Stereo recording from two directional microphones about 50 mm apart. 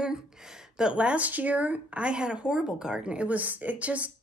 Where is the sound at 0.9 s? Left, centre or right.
Right.